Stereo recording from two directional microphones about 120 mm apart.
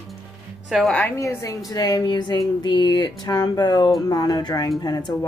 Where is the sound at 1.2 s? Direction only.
25° left (ahead or behind).